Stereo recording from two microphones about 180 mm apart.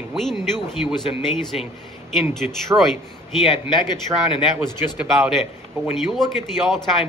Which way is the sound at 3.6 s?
25° left (ahead or behind).